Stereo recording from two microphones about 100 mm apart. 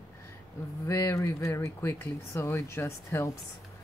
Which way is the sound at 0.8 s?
30° left (ahead or behind).